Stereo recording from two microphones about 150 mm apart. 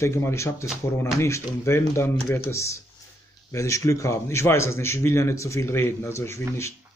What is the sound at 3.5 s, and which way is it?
A man's voice, 20° left (ahead or behind).